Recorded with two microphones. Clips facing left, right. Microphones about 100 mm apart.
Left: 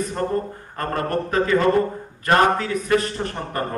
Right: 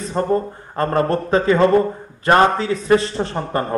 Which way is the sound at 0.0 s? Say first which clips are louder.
Right 4 dB; 25° right (ahead or behind).